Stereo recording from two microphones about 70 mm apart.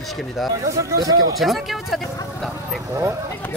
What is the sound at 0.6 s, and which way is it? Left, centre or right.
Speech, right.